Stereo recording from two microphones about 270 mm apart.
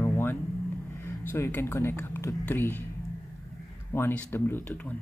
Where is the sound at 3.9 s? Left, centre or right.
Centre.